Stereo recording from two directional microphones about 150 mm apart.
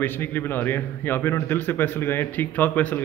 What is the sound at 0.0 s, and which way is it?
A man's voice, 15° left (ahead or behind).